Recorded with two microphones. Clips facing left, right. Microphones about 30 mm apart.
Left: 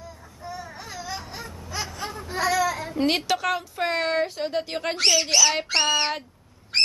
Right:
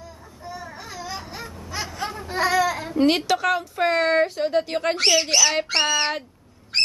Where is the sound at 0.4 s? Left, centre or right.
Centre.